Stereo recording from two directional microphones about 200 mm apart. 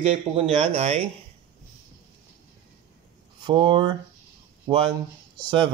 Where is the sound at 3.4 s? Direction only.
25° right (ahead or behind).